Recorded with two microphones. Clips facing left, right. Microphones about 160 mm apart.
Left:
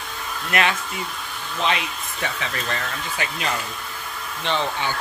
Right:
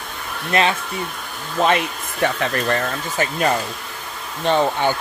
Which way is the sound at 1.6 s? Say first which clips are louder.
Right 6 dB; 50° right (ahead or behind).